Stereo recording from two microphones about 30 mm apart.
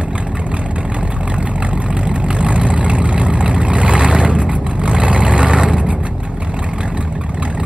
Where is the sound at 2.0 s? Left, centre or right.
Right.